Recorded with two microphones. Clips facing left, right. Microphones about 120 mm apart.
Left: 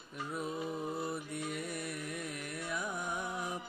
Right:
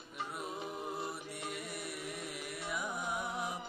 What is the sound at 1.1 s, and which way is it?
Music, centre (ahead or behind).